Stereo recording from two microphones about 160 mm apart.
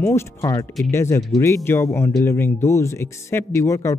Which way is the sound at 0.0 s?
20° left (ahead or behind).